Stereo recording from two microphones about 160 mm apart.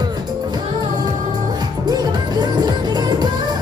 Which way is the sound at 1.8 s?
25° right (ahead or behind).